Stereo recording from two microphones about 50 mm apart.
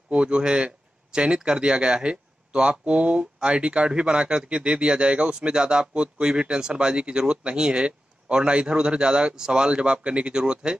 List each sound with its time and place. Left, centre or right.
0.1 s speech: right